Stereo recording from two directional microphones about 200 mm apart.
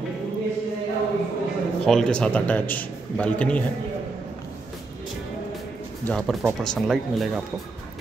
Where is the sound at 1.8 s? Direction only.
Centre (ahead or behind).